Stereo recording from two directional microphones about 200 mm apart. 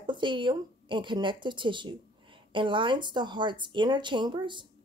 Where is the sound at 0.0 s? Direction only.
25° right (ahead or behind).